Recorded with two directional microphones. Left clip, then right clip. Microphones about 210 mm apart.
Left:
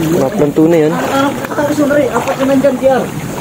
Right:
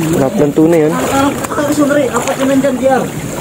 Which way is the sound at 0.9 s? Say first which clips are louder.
Even; 50° right (ahead or behind).